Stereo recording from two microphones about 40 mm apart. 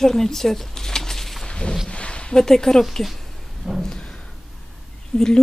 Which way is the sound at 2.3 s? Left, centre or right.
Centre.